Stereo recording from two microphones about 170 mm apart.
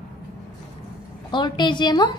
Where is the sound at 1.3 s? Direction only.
25° left (ahead or behind).